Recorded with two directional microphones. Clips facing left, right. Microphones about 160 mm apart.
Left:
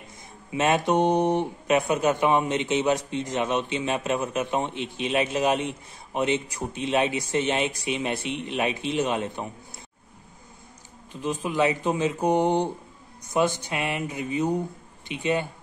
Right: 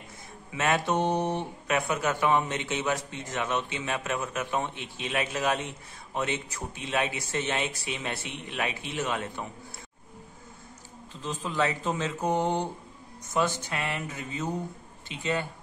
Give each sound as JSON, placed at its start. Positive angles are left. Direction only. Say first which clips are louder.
{"t": 0.5, "sound": "speech", "louder": "left 4 dB", "side_deg": 20}
{"t": 11.1, "sound": "speech", "louder": "left 5 dB", "side_deg": 15}